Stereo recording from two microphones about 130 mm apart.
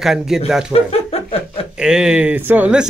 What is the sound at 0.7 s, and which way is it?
Speech, 50° left (ahead or behind).